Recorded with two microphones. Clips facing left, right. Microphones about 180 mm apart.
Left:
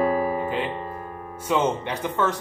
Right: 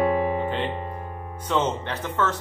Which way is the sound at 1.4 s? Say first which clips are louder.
Left 2 dB; 10° left (ahead or behind).